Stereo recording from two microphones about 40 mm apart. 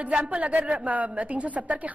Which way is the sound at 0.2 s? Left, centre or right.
Right.